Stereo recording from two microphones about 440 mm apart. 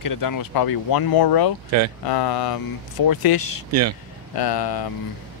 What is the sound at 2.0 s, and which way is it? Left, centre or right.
Speech, left.